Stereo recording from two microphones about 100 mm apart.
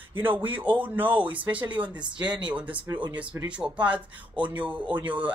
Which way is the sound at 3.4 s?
10° right (ahead or behind).